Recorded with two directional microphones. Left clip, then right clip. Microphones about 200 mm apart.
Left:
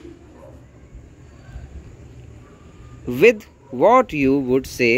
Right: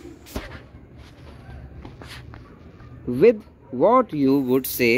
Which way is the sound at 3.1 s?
20° left (ahead or behind).